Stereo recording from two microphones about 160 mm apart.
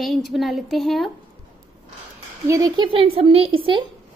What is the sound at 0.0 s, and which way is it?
A woman's voice, centre (ahead or behind).